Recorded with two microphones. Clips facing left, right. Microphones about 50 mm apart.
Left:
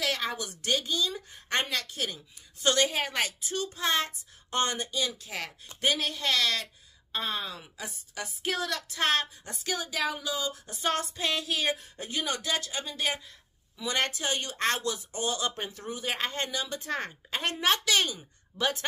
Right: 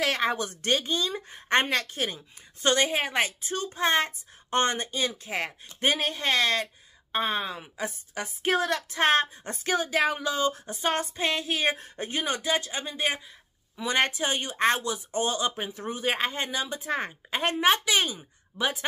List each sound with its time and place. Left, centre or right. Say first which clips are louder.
0.0 s a woman's voice: right 5 dB; right
12.4 s a woman's voice: right 4 dB; right
15.5 s speech: right 3 dB; centre
15.8 s a woman's voice: right 6 dB; right
16.2 s a woman's voice: right 3 dB; centre